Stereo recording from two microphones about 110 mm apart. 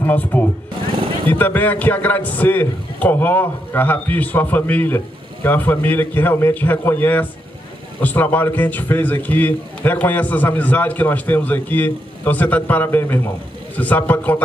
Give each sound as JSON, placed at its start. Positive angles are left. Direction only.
{"t": 0.0, "sound": "a man's voice", "side_deg": 15}